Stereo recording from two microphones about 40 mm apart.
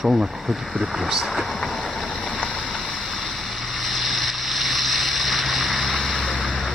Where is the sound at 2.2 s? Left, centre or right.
Left.